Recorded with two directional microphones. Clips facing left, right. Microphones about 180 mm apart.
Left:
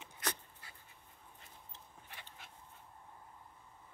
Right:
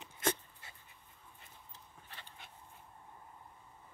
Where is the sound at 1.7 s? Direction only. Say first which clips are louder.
Even; 15° left (ahead or behind).